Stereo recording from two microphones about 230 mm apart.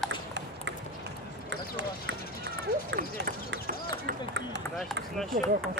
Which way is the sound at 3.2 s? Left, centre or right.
Right.